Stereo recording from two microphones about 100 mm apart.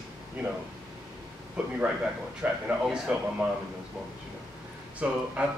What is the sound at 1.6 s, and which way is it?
Speech, 10° right (ahead or behind).